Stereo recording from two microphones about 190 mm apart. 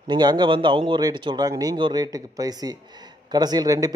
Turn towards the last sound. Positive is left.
turn(degrees=-20)  # may be behind; listen again after turning